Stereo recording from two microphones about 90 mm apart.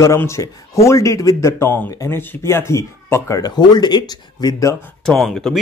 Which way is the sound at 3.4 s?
50° left (ahead or behind).